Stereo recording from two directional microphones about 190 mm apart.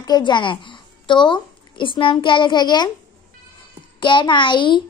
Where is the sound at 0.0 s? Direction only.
25° left (ahead or behind).